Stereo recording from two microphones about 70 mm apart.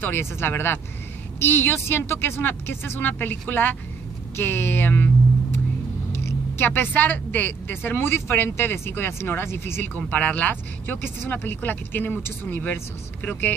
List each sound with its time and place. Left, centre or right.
0.0 s speech: left
6.2 s speech: left
9.9 s speech: left